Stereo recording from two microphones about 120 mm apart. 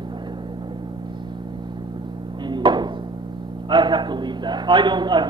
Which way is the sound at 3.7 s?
40° right (ahead or behind).